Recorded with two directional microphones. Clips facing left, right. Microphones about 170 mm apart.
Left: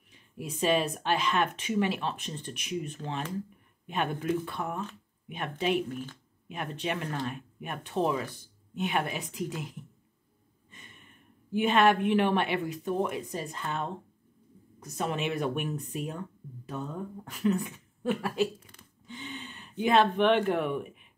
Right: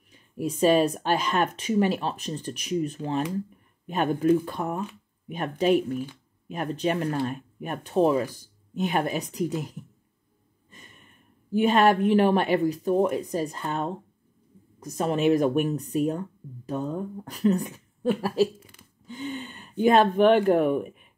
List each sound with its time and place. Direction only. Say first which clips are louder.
0.4 s speech: right 7 dB; 40° right (ahead or behind)
11.5 s speech: right 4 dB; 40° right (ahead or behind)